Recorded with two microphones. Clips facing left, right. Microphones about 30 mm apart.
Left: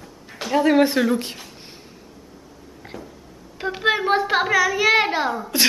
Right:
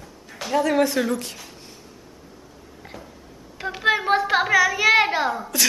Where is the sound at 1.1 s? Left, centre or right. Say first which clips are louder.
Left 4 dB; left.